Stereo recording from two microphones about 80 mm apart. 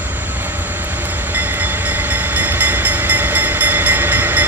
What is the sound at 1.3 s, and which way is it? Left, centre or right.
Train, right.